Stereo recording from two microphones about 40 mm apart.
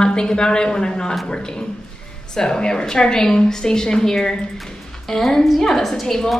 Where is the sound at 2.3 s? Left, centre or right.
Centre.